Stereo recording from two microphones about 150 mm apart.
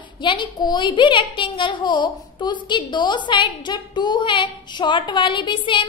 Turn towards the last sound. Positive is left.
turn(degrees=35)  # may be behind; listen again after turning